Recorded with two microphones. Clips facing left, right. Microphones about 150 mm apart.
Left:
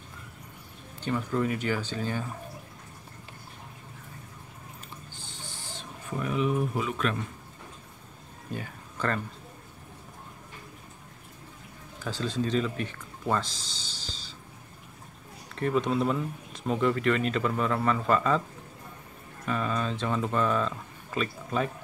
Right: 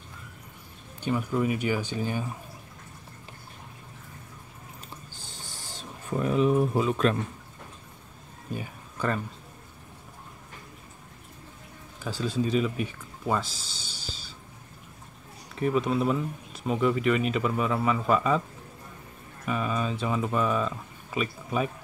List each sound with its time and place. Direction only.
1.0 s speech: 10° right (ahead or behind)
5.1 s a sound: 40° right (ahead or behind)
8.5 s speech: 10° right (ahead or behind)
12.0 s speech: 10° right (ahead or behind)
15.5 s speech: 5° right (ahead or behind)
19.4 s speech: 10° right (ahead or behind)